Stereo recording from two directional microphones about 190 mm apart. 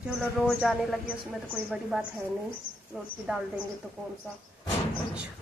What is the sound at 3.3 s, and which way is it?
Speech, 5° right (ahead or behind).